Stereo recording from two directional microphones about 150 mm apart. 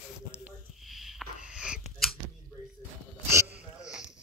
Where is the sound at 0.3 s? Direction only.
10° right (ahead or behind).